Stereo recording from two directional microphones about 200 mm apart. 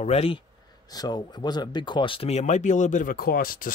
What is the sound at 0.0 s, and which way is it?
Speech, 30° left (ahead or behind).